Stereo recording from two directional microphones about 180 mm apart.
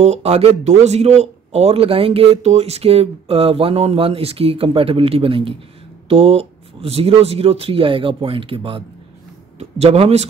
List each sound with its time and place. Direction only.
0.0 s speech: 35° right (ahead or behind)